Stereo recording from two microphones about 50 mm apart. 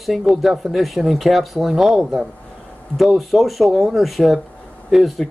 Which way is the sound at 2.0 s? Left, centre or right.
Centre.